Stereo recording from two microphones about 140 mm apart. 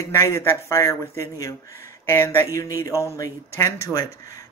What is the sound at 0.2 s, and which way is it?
A man's voice, 20° left (ahead or behind).